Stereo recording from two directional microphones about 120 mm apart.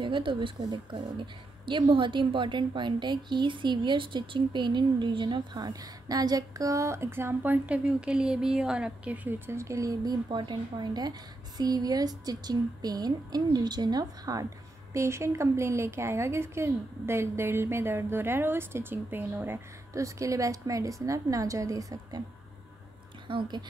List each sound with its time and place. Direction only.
0.0 s a woman's voice: 45° right (ahead or behind); by 22.2 s 30° right (ahead or behind)
23.2 s speech: 45° right (ahead or behind)